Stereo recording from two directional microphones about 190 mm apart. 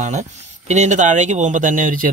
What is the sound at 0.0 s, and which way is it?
Speech, 40° right (ahead or behind).